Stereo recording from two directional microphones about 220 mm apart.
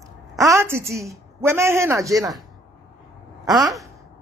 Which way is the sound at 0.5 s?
10° right (ahead or behind).